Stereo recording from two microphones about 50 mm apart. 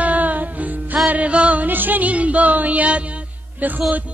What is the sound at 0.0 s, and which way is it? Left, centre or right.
Music, right.